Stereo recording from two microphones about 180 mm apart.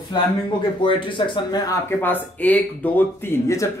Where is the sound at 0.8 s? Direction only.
30° left (ahead or behind).